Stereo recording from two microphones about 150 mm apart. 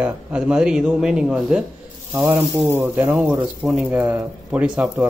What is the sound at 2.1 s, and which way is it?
Speech, 15° right (ahead or behind).